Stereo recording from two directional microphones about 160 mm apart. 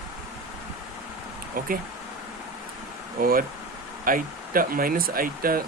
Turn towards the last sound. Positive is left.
turn(degrees=-65)  # may be behind; listen again after turning